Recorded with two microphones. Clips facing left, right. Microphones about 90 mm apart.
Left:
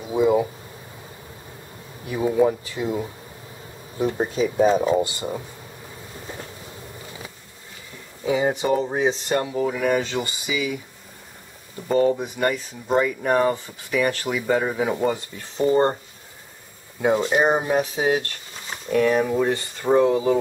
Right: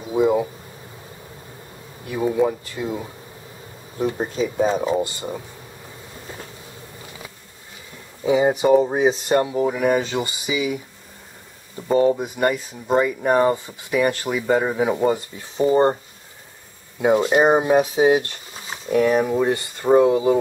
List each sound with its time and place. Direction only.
0.1 s a sound: centre (ahead or behind)
2.0 s speech: centre (ahead or behind)
8.2 s speech: 15° right (ahead or behind)
11.9 s speech: 10° right (ahead or behind)
17.0 s speech: 10° right (ahead or behind)